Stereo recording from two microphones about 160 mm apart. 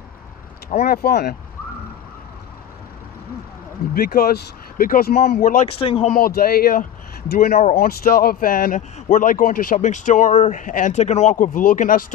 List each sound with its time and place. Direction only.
0.7 s speech: 75° left (ahead or behind)
3.9 s speech: 75° left (ahead or behind)
5.7 s speech: 35° left (ahead or behind)
6.1 s a man's voice: 70° left (ahead or behind)